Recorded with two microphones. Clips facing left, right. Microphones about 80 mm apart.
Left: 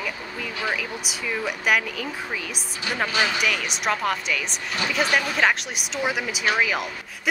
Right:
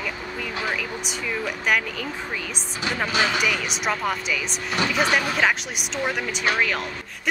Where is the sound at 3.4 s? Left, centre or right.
Centre.